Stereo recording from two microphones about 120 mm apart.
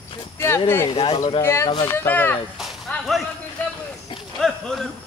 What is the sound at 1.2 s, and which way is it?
Speech, 35° left (ahead or behind).